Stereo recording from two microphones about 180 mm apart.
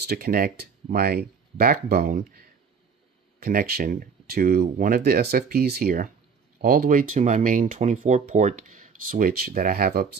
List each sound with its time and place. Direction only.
0.0 s speech: 60° right (ahead or behind)